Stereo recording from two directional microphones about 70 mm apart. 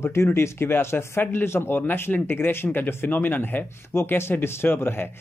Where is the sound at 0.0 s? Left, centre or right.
Left.